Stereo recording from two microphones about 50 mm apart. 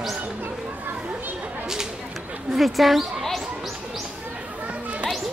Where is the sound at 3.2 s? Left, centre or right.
Centre.